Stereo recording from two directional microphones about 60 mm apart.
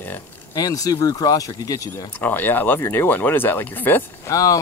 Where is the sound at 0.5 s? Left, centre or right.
Left.